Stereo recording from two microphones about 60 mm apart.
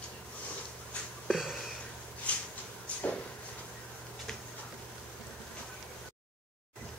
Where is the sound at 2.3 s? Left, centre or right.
Left.